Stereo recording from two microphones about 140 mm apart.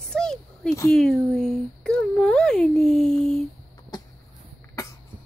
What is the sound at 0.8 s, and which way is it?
Speech, 5° left (ahead or behind).